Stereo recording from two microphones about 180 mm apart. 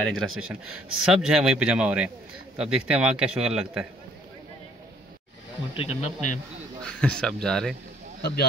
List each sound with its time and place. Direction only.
0.1 s a man's voice: centre (ahead or behind)
5.8 s speech: 35° left (ahead or behind)
6.8 s a man's voice: 5° left (ahead or behind)